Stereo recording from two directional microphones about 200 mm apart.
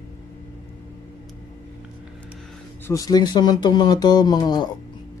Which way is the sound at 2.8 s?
15° left (ahead or behind).